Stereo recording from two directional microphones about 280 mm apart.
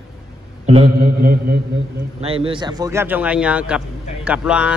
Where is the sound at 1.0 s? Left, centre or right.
Right.